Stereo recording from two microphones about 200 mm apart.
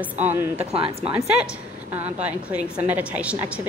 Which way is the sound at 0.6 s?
30° right (ahead or behind).